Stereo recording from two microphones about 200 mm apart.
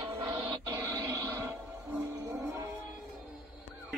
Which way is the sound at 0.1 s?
20° right (ahead or behind).